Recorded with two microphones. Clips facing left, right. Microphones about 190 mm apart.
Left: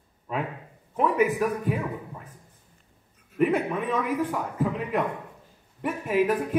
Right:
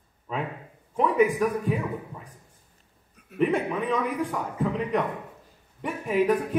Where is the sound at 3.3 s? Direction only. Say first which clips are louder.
Left 1 dB; 65° right (ahead or behind).